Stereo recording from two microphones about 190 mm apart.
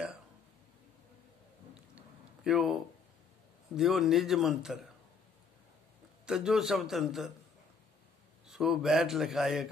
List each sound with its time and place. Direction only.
2.0 s a sound: centre (ahead or behind)
3.7 s speech: centre (ahead or behind)
6.2 s speech: 5° right (ahead or behind)
8.5 s speech: centre (ahead or behind)